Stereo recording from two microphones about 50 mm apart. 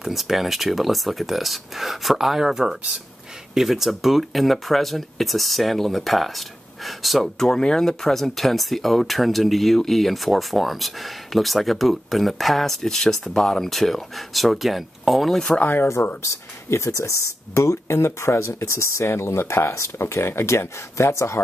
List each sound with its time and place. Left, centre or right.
0.0 s speech: centre
7.3 s speech: centre
15.3 s speech: centre
15.6 s speech: left
16.2 s speech: left